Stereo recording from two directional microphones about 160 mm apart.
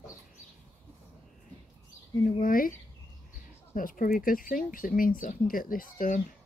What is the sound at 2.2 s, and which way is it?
Speech, 60° left (ahead or behind).